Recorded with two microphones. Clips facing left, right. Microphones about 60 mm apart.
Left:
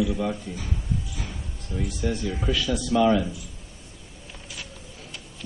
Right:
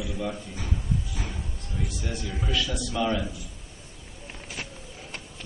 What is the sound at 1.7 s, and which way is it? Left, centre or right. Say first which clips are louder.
A man's voice: left 6 dB; centre.